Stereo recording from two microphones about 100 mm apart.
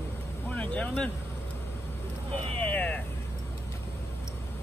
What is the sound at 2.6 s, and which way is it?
Vehicle, 15° left (ahead or behind).